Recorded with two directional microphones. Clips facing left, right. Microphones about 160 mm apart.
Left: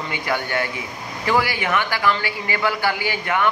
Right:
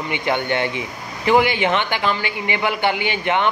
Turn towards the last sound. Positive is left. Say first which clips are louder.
# right 2 dB
turn(degrees=-25)  # may be behind; listen again after turning